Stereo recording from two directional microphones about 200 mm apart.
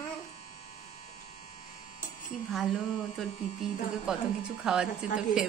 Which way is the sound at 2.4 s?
Centre (ahead or behind).